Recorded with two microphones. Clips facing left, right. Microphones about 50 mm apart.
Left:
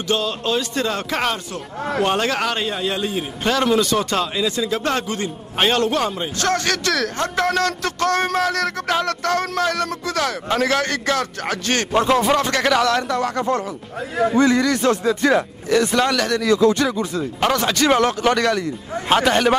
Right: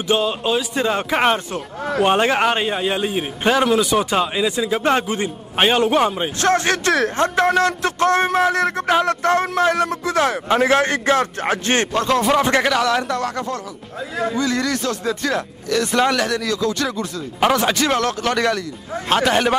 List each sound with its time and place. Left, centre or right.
0.1 s a man's voice: centre
1.8 s speech: centre
2.0 s a man's voice: right
11.9 s speech: centre
12.6 s speech: centre
13.5 s speech: left
15.2 s speech: centre
15.9 s a man's voice: centre
16.9 s speech: centre
17.4 s a man's voice: centre
17.8 s speech: centre
18.3 s speech: centre